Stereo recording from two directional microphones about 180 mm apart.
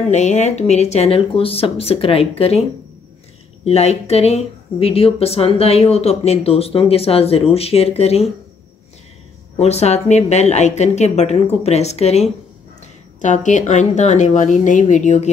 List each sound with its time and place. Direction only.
0.1 s speech: 40° left (ahead or behind)
3.6 s speech: 35° left (ahead or behind)
9.6 s speech: 35° left (ahead or behind)